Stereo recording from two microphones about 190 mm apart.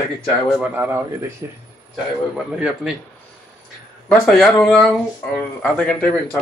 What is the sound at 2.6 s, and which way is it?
Speech, 5° right (ahead or behind).